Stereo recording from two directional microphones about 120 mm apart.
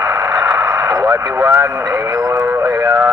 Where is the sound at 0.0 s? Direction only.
30° right (ahead or behind).